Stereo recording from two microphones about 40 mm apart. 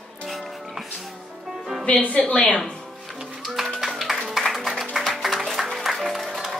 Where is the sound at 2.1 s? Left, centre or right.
Left.